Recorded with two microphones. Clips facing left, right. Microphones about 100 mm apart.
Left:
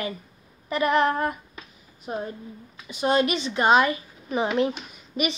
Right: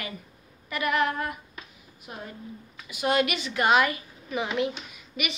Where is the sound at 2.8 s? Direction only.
30° left (ahead or behind).